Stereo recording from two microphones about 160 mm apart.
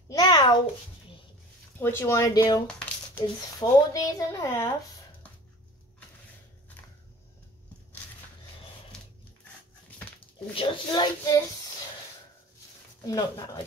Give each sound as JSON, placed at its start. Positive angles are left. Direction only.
{"t": 0.1, "sound": "a sound", "side_deg": 25}
{"t": 1.8, "sound": "speech", "side_deg": 15}
{"t": 2.6, "sound": "a sound", "side_deg": 10}
{"t": 3.6, "sound": "speech", "side_deg": 20}
{"t": 9.8, "sound": "dog", "side_deg": 10}
{"t": 10.5, "sound": "speech", "side_deg": 30}
{"t": 13.0, "sound": "speech", "side_deg": 25}